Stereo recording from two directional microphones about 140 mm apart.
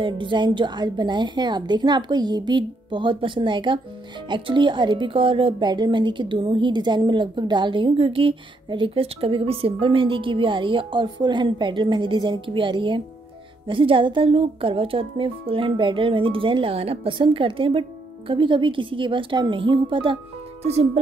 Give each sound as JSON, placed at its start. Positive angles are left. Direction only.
{"t": 0.0, "sound": "speech", "side_deg": -35}
{"t": 20.6, "sound": "speech", "side_deg": -50}